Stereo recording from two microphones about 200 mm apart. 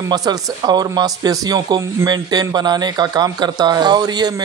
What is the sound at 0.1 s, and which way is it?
Speech, 20° right (ahead or behind).